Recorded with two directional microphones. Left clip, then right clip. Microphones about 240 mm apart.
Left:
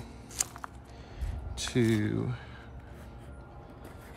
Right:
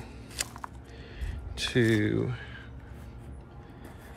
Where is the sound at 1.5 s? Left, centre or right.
Centre.